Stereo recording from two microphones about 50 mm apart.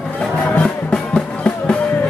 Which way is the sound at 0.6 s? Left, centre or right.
Left.